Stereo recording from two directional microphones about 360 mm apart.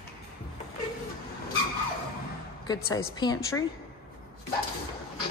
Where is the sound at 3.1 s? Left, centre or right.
Centre.